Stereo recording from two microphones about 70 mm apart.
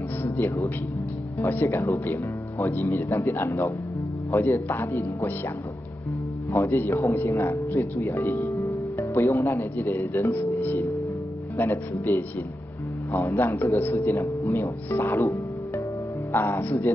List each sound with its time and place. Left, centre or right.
1.4 s speech: left
6.5 s speech: left
13.1 s a man's voice: left
14.0 s speech: left
14.6 s speech: left
16.3 s speech: left